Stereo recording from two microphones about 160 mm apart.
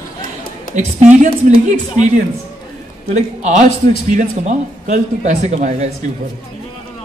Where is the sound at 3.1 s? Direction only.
45° right (ahead or behind).